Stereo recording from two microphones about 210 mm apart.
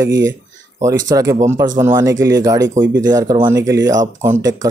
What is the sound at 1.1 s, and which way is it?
Speech, 15° right (ahead or behind).